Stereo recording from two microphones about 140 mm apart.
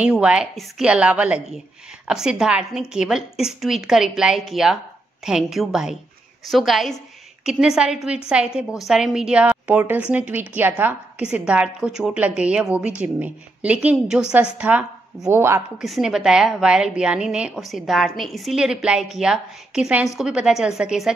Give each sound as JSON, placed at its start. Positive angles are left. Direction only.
{"t": 0.0, "sound": "a woman's voice", "side_deg": -10}
{"t": 15.8, "sound": "a woman's voice", "side_deg": 0}